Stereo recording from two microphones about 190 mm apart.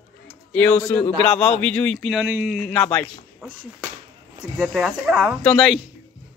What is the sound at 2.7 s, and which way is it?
Speech, 5° left (ahead or behind).